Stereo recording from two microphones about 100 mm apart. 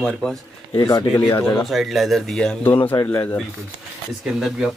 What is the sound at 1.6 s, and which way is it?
Speech, centre (ahead or behind).